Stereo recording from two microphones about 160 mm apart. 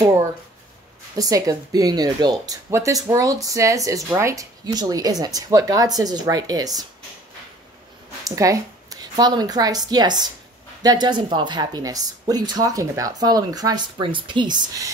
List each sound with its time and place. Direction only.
1.1 s speech: 20° right (ahead or behind)
8.2 s a woman's voice: 20° right (ahead or behind)